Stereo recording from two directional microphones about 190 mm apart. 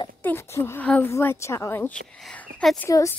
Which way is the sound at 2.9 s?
15° left (ahead or behind).